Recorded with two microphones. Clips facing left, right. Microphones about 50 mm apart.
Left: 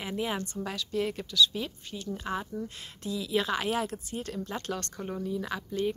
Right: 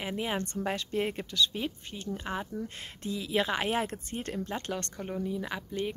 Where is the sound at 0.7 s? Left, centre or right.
Right.